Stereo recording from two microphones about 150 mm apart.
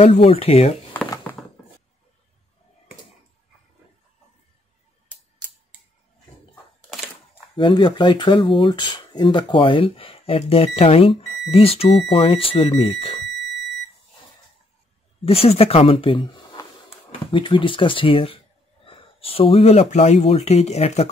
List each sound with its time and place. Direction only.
0.0 s speech: 40° left (ahead or behind)
1.3 s a sound: 15° left (ahead or behind)
7.5 s speech: 30° left (ahead or behind)
15.2 s speech: 40° left (ahead or behind)